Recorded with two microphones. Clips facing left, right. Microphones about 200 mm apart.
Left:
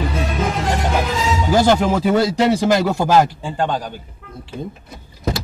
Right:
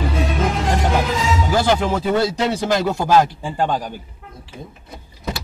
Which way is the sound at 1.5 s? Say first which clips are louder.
Left 4 dB; 45° left (ahead or behind).